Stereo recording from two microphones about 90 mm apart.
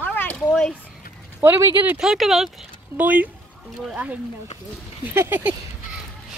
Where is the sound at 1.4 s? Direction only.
25° right (ahead or behind).